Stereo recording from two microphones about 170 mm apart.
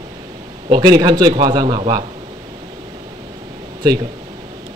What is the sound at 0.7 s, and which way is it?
Speech, 25° right (ahead or behind).